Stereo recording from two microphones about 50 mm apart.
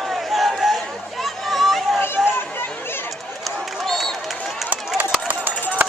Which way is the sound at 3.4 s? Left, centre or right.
Centre.